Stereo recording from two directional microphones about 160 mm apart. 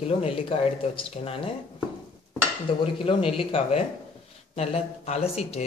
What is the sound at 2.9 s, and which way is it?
Speech, 35° left (ahead or behind).